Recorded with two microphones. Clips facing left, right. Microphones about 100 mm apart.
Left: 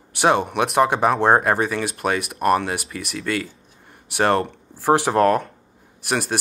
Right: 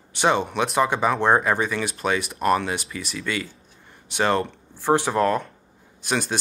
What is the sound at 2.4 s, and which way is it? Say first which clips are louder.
Speech: left 3 dB; 55° left (ahead or behind).